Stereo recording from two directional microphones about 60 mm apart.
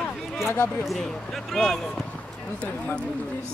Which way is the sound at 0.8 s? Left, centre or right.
Centre.